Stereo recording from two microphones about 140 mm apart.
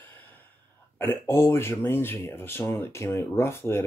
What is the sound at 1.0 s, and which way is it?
Speech, 15° left (ahead or behind).